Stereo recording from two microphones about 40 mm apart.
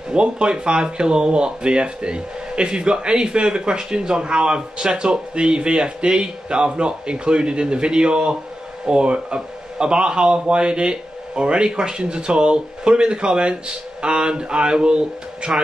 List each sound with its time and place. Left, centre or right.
0.1 s speech: right